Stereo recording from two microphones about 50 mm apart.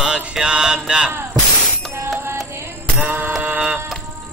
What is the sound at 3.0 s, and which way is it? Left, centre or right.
Mantra, right.